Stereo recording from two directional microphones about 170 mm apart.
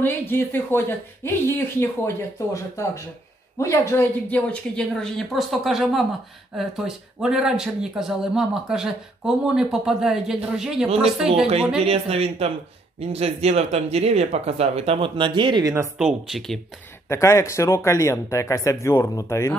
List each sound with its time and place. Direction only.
0.0 s speech: 10° left (ahead or behind); by 10.9 s 5° right (ahead or behind)
11.8 s speech: 35° right (ahead or behind)
16.0 s speech: 5° right (ahead or behind)
17.1 s speech: 15° left (ahead or behind)